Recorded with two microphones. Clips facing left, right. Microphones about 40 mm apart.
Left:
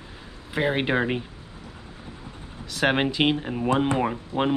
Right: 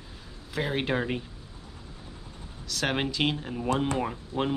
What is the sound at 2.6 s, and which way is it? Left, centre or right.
Speech, left.